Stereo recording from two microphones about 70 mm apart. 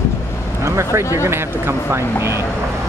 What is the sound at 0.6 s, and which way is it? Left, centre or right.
Speech, right.